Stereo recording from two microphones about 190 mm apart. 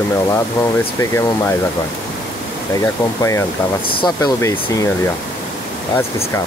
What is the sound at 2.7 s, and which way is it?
Speech, 15° left (ahead or behind).